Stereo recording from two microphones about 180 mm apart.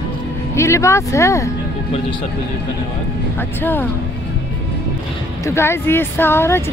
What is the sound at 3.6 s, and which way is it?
Speech, 10° left (ahead or behind).